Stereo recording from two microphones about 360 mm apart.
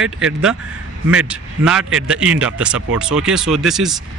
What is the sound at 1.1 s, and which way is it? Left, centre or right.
A man's voice, centre.